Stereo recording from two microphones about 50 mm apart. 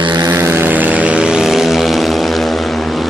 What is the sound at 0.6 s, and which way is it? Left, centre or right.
Vehicle, right.